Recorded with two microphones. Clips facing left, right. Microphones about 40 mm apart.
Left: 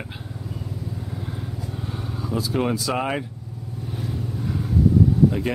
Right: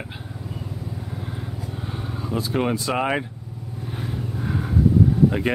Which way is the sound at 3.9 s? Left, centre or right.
Right.